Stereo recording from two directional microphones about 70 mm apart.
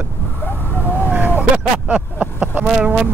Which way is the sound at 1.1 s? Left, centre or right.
Right.